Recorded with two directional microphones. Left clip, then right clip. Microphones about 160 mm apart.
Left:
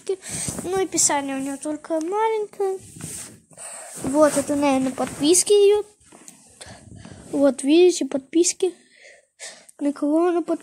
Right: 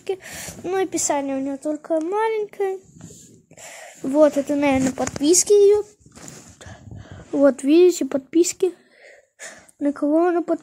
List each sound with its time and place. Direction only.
0.0 s speech: 10° right (ahead or behind)
1.1 s speech: 20° left (ahead or behind)
2.0 s speech: 10° right (ahead or behind)
3.7 s speech: 20° right (ahead or behind)
4.7 s speech: 5° right (ahead or behind)